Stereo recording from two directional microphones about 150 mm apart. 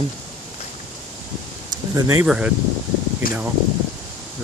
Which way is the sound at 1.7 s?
25° right (ahead or behind).